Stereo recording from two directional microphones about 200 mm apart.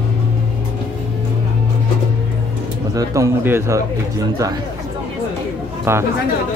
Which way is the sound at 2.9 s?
15° right (ahead or behind).